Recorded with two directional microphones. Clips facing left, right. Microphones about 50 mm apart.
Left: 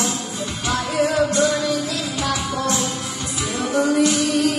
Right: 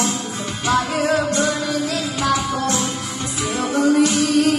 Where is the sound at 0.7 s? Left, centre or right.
Right.